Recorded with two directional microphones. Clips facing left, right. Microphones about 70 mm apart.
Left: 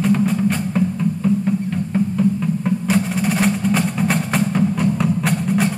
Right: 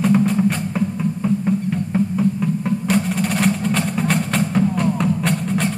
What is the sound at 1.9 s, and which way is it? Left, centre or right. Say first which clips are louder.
Music: left 1 dB; centre.